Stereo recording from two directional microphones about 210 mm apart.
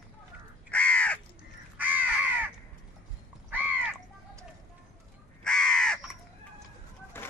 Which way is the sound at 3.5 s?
10° right (ahead or behind).